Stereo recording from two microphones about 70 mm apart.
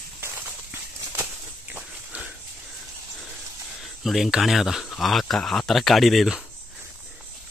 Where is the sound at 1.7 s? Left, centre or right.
Centre.